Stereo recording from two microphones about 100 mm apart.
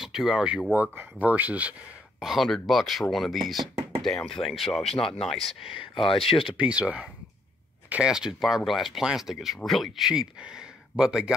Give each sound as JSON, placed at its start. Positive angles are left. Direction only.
{"t": 0.0, "sound": "speech", "side_deg": -5}
{"t": 0.7, "sound": "speech", "side_deg": -15}
{"t": 5.8, "sound": "speech", "side_deg": 65}
{"t": 6.4, "sound": "speech", "side_deg": -10}